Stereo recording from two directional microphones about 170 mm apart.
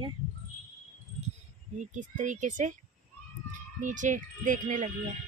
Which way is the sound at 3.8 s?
50° right (ahead or behind).